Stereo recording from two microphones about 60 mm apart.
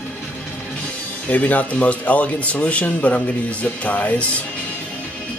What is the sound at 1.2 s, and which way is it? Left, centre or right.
Speech, left.